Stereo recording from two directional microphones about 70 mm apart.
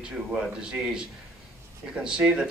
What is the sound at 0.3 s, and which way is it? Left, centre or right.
A man's voice, centre.